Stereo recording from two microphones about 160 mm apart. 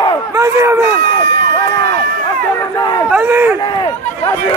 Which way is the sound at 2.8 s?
25° left (ahead or behind).